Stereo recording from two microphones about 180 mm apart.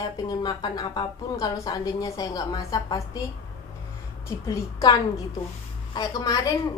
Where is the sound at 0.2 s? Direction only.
20° left (ahead or behind).